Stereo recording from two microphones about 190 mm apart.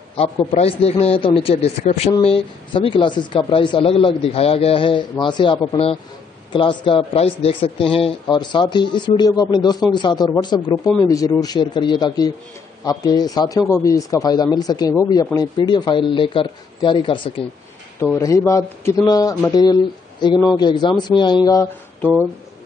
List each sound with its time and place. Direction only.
0.1 s a man's voice: 30° left (ahead or behind)
18.2 s a man's voice: 15° left (ahead or behind)